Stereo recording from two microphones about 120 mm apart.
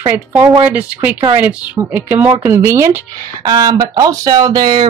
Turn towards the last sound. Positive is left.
turn(degrees=-35)  # may be behind; listen again after turning